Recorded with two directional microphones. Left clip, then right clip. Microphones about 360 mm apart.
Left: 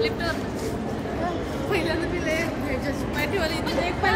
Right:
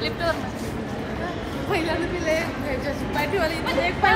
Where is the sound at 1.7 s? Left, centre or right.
Centre.